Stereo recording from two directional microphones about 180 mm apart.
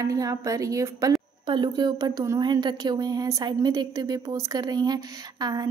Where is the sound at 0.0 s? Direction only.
20° right (ahead or behind).